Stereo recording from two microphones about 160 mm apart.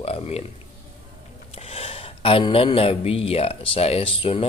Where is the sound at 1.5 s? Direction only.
35° left (ahead or behind).